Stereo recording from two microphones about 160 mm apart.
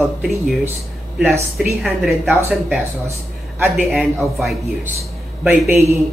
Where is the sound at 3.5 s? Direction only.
10° right (ahead or behind).